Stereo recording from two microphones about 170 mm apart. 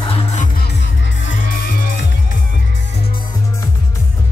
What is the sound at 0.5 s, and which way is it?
Music, 80° left.